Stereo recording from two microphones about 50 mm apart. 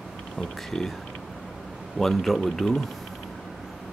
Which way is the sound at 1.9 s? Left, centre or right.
Centre.